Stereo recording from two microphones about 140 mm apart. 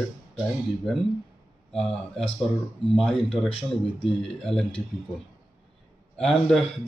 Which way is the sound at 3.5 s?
40° left (ahead or behind).